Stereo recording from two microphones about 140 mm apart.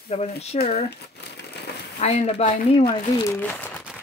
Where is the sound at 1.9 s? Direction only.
50° left (ahead or behind).